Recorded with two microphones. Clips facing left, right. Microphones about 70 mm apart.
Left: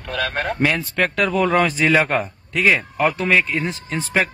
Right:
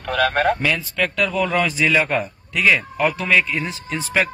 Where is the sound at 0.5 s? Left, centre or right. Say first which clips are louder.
Left 2 dB; left.